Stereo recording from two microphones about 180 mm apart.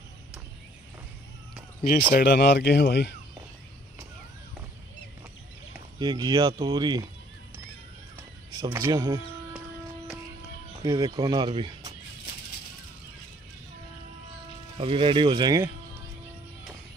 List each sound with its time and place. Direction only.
1.9 s speech: 55° left (ahead or behind)
5.9 s speech: 25° right (ahead or behind)
8.5 s speech: 20° right (ahead or behind)
10.8 s speech: 20° right (ahead or behind)
14.8 s speech: 30° right (ahead or behind)